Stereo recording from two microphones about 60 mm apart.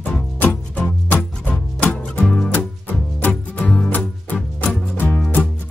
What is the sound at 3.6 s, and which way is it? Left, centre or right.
Music, centre.